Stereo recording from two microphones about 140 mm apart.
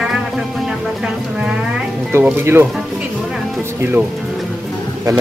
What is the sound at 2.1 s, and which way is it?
Speech, 15° right (ahead or behind).